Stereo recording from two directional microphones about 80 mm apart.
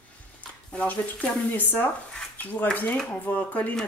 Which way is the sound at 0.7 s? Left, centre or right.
Centre.